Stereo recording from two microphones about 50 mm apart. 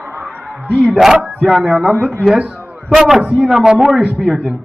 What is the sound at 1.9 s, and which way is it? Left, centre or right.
Speech, right.